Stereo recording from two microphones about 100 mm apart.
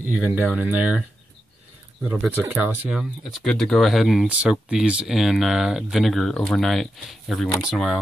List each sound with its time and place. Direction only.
0.1 s speech: 15° right (ahead or behind)
2.0 s speech: 15° right (ahead or behind)
2.9 s speech: centre (ahead or behind)